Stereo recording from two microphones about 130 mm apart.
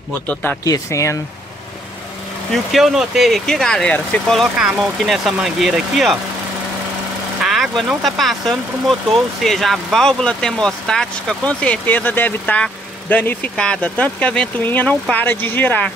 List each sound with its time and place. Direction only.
0.3 s speech: 15° left (ahead or behind)
0.7 s speech: 25° left (ahead or behind)
2.5 s speech: centre (ahead or behind)
7.4 s speech: 5° right (ahead or behind); by 15.9 s 15° left (ahead or behind)